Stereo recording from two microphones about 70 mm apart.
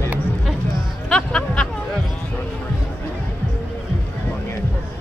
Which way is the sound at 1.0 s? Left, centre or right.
Centre.